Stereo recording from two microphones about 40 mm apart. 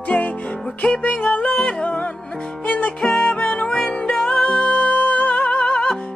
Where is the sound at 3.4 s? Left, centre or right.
Left.